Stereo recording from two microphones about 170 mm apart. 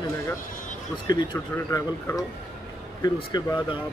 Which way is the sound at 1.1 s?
20° left (ahead or behind).